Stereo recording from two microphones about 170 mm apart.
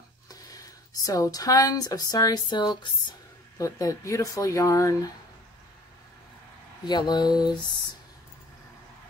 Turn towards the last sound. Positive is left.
turn(degrees=25)  # may be behind; listen again after turning